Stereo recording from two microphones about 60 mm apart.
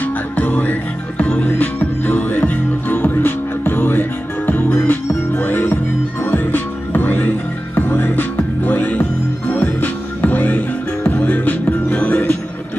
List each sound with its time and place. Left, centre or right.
0.0 s music: left